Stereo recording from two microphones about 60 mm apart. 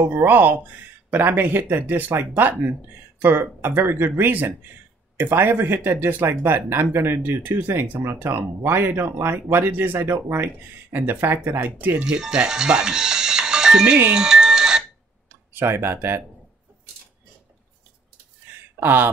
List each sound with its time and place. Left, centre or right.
0.0 s speech: right
12.0 s speech: centre
14.1 s music: centre
15.2 s speech: right
18.8 s speech: right